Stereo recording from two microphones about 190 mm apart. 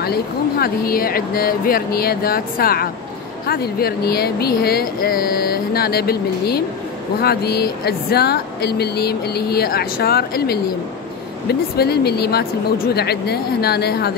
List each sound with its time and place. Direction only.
0.0 s speech: 55° left (ahead or behind)